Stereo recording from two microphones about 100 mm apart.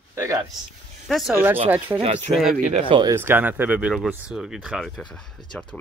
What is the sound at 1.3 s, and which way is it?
Speech, 20° right (ahead or behind).